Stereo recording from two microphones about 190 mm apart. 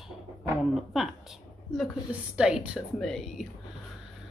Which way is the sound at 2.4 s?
5° right (ahead or behind).